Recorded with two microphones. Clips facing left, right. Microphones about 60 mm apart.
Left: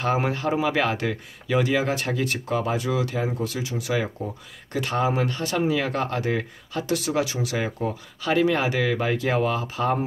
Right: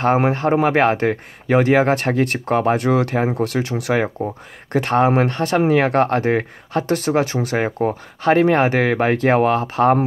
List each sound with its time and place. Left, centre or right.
0.0 s speech: right